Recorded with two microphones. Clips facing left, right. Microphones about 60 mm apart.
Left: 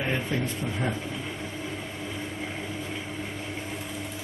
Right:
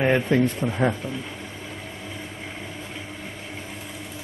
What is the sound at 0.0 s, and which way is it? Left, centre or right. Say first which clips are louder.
Speech: right 9 dB; right.